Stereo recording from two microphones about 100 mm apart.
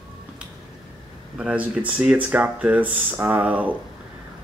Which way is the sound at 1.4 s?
15° right (ahead or behind).